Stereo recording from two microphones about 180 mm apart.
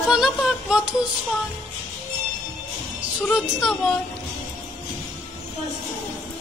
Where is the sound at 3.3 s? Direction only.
Centre (ahead or behind).